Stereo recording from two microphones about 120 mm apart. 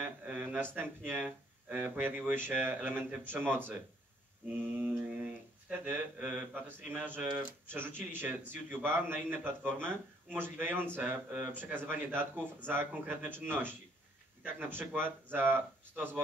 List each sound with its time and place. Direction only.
0.0 s speech: 15° right (ahead or behind)